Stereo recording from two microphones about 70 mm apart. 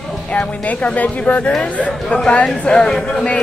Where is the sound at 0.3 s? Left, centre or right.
Centre.